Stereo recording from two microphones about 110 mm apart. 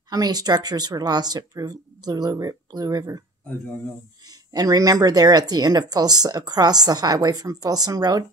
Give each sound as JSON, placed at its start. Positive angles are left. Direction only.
{"t": 0.1, "sound": "a woman's voice", "side_deg": -35}
{"t": 4.3, "sound": "a woman's voice", "side_deg": -35}